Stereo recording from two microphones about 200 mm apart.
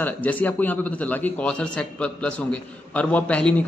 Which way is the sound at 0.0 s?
10° left (ahead or behind).